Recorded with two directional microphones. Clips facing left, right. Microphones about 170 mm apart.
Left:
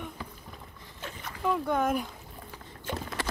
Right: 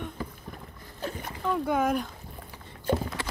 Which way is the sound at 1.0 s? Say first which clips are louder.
Right 6 dB; 45° right (ahead or behind).